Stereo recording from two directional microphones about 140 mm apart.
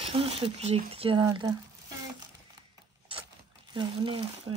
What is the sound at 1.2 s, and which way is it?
Speech, 25° right (ahead or behind).